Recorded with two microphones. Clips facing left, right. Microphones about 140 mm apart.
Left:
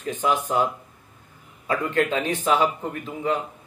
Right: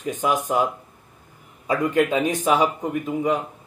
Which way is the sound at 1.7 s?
10° right (ahead or behind).